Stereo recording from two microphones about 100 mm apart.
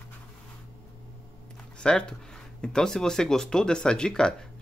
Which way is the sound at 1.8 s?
10° left (ahead or behind).